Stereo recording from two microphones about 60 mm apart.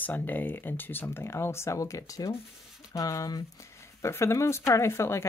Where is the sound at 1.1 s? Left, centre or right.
Left.